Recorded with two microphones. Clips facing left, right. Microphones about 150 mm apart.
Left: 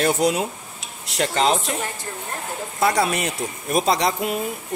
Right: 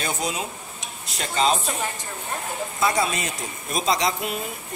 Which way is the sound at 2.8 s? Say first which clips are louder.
Left 4 dB; 65° left (ahead or behind).